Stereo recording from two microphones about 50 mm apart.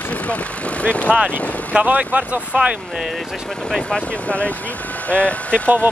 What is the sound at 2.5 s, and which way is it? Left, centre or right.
Speech, right.